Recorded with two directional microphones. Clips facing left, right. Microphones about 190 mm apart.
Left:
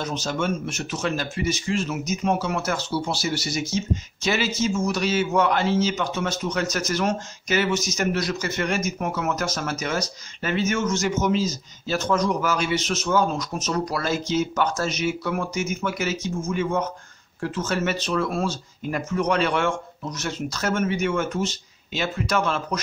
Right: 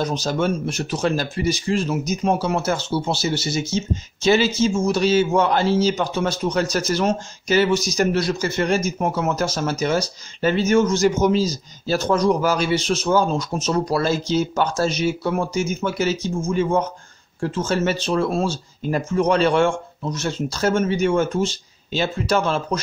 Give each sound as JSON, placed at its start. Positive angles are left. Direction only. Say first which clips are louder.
{"t": 0.0, "sound": "speech", "louder": "right 5 dB", "side_deg": -35}